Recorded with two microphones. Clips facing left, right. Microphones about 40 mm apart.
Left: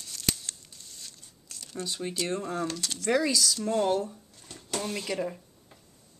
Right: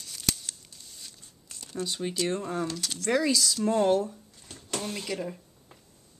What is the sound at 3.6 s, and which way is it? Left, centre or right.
Speech, centre.